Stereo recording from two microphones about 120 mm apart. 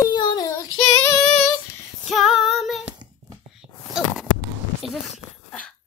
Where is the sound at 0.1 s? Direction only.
40° left (ahead or behind).